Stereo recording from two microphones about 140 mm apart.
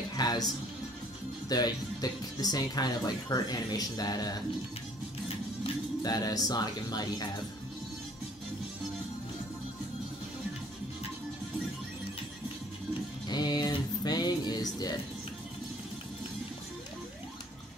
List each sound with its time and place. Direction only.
0.1 s music: 30° left (ahead or behind)
1.5 s speech: 30° left (ahead or behind)
6.0 s speech: 25° left (ahead or behind)
13.3 s speech: 30° left (ahead or behind)